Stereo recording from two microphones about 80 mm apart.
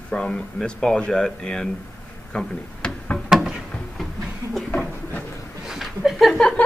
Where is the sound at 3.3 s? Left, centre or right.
Centre.